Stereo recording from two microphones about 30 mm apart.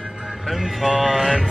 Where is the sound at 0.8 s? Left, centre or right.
Centre.